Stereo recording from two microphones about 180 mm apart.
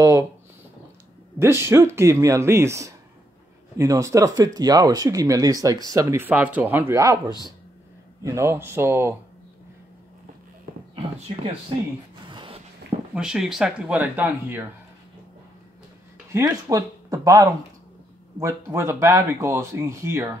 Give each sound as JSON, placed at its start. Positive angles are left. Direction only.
{"t": 0.0, "sound": "speech", "side_deg": -20}
{"t": 1.4, "sound": "speech", "side_deg": -15}
{"t": 8.2, "sound": "speech", "side_deg": -15}
{"t": 12.3, "sound": "a sound", "side_deg": -25}
{"t": 13.1, "sound": "speech", "side_deg": -5}
{"t": 16.3, "sound": "speech", "side_deg": -15}